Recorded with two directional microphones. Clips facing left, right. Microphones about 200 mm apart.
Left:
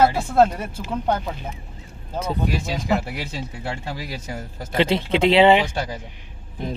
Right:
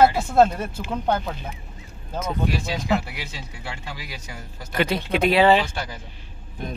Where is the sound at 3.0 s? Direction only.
45° left (ahead or behind).